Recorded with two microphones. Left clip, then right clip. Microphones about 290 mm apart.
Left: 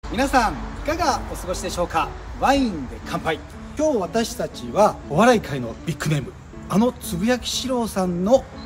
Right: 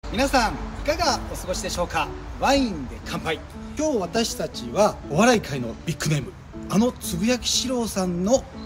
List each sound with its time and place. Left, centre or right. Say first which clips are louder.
0.1 s speech: left 2 dB; centre